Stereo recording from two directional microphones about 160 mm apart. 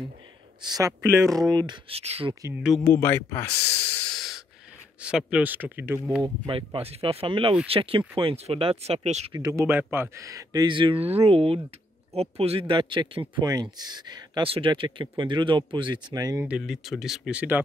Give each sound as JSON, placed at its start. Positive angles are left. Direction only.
{"t": 0.6, "sound": "speech", "side_deg": -25}
{"t": 1.9, "sound": "speech", "side_deg": -40}
{"t": 2.8, "sound": "speech", "side_deg": 15}
{"t": 3.6, "sound": "speech", "side_deg": 40}
{"t": 4.0, "sound": "breathing", "side_deg": 0}
{"t": 5.0, "sound": "speech", "side_deg": -5}
{"t": 6.2, "sound": "speech", "side_deg": -30}
{"t": 9.3, "sound": "speech", "side_deg": -20}
{"t": 16.4, "sound": "speech", "side_deg": -5}